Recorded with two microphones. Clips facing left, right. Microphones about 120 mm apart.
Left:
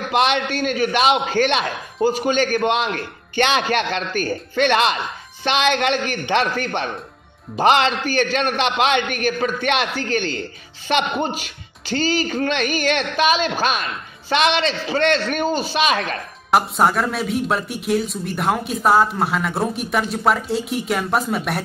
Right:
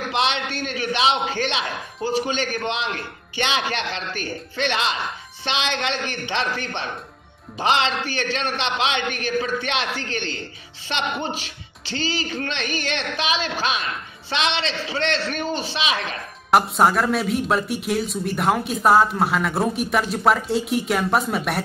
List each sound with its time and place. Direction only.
0.1 s a man's voice: 50° left (ahead or behind)
16.4 s a man's voice: centre (ahead or behind)